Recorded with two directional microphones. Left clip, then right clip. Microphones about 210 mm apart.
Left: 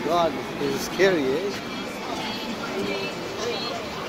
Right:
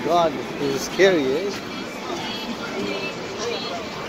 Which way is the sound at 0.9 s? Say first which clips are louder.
Right 4 dB; 15° right (ahead or behind).